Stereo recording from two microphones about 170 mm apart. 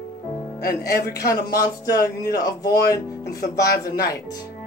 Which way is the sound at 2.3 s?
20° left (ahead or behind).